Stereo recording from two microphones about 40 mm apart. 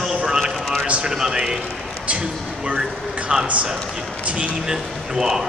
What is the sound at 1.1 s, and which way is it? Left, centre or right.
Speech, centre.